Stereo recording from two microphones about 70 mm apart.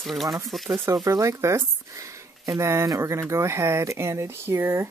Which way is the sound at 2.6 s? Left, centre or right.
Right.